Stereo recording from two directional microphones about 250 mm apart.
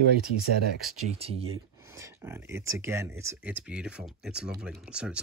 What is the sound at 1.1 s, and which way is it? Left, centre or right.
Speech, right.